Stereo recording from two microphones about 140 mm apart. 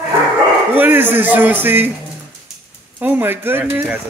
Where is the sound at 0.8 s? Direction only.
15° right (ahead or behind).